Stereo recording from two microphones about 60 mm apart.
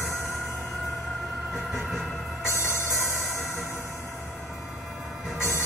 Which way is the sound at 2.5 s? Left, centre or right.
Left.